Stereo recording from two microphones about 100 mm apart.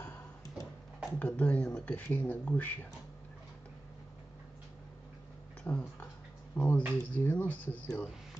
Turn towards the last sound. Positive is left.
turn(degrees=15)  # may be behind; listen again after turning